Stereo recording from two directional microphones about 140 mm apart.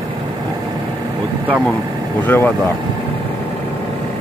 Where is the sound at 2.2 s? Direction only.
15° left (ahead or behind).